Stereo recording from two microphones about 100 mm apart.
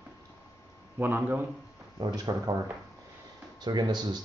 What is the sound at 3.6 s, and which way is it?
Speech, 45° right (ahead or behind).